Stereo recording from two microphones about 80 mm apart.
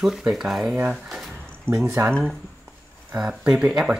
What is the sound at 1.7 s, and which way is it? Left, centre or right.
Speech, right.